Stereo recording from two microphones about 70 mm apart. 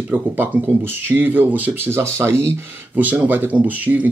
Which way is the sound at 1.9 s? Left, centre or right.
Right.